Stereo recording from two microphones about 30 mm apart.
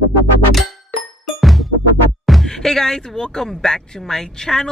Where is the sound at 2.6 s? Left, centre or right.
Centre.